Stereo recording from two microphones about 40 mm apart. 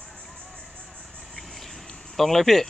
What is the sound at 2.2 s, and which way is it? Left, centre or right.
Speech, centre.